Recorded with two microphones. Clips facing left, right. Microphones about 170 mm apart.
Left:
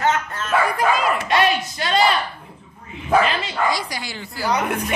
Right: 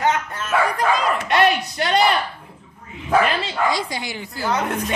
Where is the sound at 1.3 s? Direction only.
60° right (ahead or behind).